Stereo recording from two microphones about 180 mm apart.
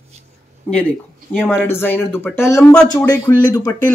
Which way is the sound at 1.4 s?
10° left (ahead or behind).